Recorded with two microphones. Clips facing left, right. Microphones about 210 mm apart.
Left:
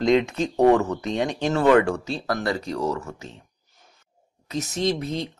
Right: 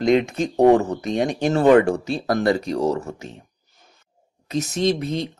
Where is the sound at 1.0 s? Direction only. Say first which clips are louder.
Right 3 dB; 15° right (ahead or behind).